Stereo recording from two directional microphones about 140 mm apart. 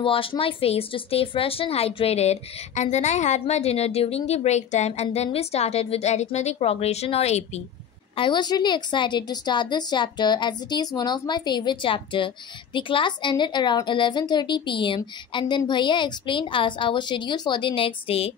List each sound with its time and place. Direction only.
0.0 s a woman's voice: 40° left (ahead or behind)
8.2 s a woman's voice: 30° left (ahead or behind)